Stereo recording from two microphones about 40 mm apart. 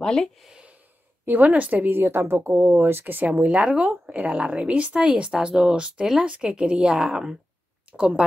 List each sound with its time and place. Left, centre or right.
0.0 s speech: centre
1.2 s a woman's voice: right
1.9 s speech: right
3.3 s speech: right
4.9 s a woman's voice: right